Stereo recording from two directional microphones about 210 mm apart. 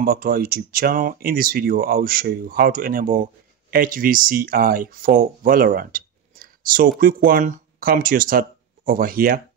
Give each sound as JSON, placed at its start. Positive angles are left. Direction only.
{"t": 0.0, "sound": "speech", "side_deg": -45}